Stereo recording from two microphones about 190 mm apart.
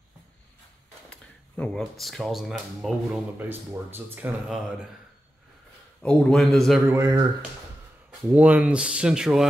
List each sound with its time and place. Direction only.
1.1 s speech: 5° left (ahead or behind)
6.0 s speech: centre (ahead or behind)
6.9 s speech: 15° right (ahead or behind)
8.3 s speech: 10° right (ahead or behind)